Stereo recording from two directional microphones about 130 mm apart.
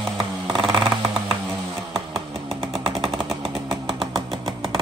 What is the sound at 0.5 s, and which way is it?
Vehicle, 40° right (ahead or behind).